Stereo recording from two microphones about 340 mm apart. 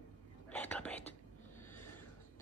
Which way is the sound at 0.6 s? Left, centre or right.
Centre.